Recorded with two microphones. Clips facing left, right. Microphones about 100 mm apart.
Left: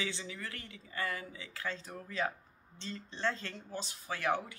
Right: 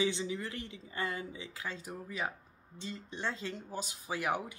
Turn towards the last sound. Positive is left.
turn(degrees=-15)  # may be behind; listen again after turning